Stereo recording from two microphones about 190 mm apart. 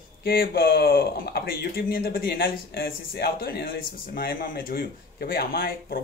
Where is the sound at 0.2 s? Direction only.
50° left (ahead or behind).